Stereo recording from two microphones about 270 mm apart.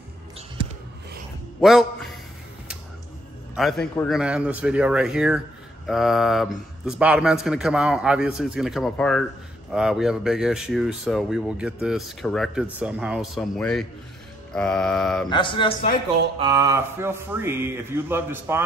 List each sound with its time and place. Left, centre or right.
1.6 s a man's voice: centre
3.5 s speech: centre
15.2 s speech: centre
16.3 s a man's voice: centre